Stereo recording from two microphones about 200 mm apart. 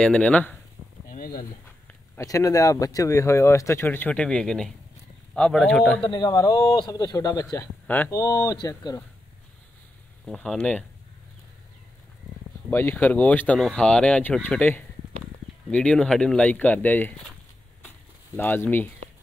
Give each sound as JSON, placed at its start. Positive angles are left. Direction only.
{"t": 0.0, "sound": "speech", "side_deg": 5}
{"t": 1.0, "sound": "a sound", "side_deg": 45}
{"t": 2.1, "sound": "speech", "side_deg": 15}
{"t": 6.0, "sound": "speech", "side_deg": 20}
{"t": 10.2, "sound": "speech", "side_deg": 0}
{"t": 12.6, "sound": "speech", "side_deg": 10}
{"t": 18.3, "sound": "speech", "side_deg": 10}